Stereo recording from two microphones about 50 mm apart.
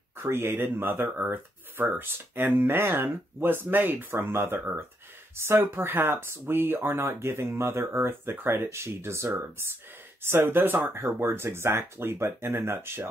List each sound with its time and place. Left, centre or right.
0.2 s speech: right
10.2 s speech: right